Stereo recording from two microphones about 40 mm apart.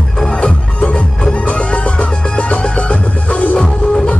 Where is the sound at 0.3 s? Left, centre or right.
Left.